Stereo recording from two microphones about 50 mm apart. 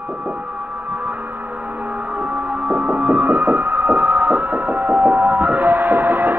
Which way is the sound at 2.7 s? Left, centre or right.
Right.